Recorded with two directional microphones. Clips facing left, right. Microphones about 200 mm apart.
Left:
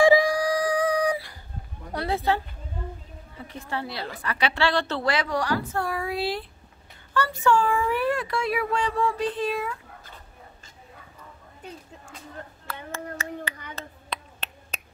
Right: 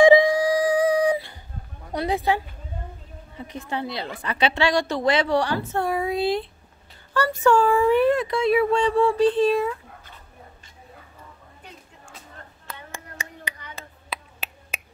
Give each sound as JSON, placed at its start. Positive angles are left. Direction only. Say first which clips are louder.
{"t": 0.0, "sound": "a sound", "louder": "right 4 dB", "side_deg": -20}
{"t": 3.3, "sound": "a woman's voice", "louder": "right 3 dB", "side_deg": -20}
{"t": 7.2, "sound": "a woman's voice", "louder": "right 4 dB", "side_deg": -40}
{"t": 12.6, "sound": "clapping", "louder": "left 5 dB", "side_deg": -15}
{"t": 14.1, "sound": "finger snapping", "louder": "right 1 dB", "side_deg": -5}